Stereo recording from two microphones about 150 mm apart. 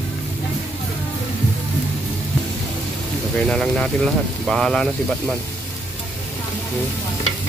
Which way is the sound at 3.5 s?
5° left (ahead or behind).